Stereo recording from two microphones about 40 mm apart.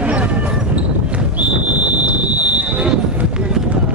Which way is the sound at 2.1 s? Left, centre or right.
Right.